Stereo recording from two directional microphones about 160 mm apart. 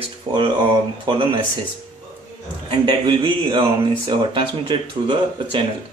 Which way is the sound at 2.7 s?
30° right (ahead or behind).